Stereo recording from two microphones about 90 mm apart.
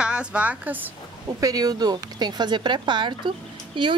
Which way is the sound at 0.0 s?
10° right (ahead or behind).